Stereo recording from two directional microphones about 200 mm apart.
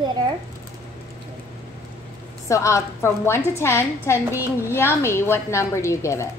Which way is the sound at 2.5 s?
15° left (ahead or behind).